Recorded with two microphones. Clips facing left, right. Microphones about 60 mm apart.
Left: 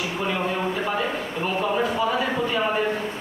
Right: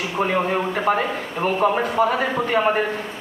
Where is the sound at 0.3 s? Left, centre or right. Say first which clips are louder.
Right 2 dB; right.